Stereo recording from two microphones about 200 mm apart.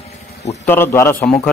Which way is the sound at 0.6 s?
10° left (ahead or behind).